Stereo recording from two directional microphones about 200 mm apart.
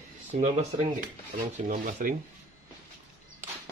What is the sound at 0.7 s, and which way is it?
Speech, 30° right (ahead or behind).